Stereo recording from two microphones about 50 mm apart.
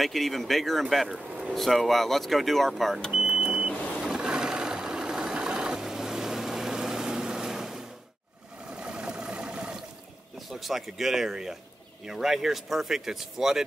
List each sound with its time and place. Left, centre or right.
0.0 s speech: centre
3.1 s smoke detector: centre
4.1 s vehicle: centre
10.5 s speech: centre